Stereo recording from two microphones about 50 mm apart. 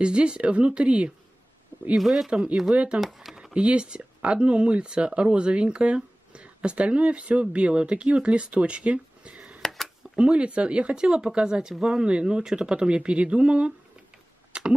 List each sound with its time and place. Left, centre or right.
0.0 s speech: right
2.0 s speech: centre
2.7 s speech: right
3.0 s speech: centre
3.5 s speech: right
9.6 s a sound: centre
10.1 s speech: right
14.5 s computer keyboard: right